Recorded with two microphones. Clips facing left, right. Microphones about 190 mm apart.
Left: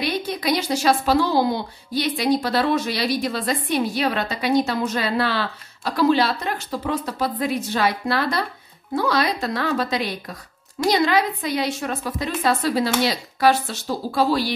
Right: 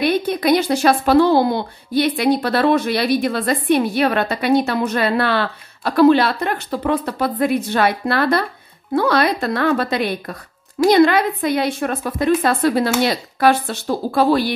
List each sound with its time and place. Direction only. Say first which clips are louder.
0.0 s speech: right 7 dB; 55° right (ahead or behind)